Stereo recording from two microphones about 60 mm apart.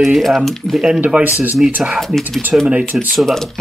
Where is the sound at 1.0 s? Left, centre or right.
Right.